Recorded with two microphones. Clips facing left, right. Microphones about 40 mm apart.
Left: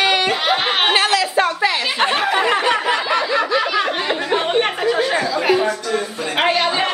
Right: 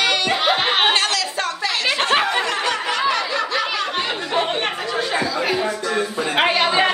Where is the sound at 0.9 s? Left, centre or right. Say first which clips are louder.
Left 5 dB; centre.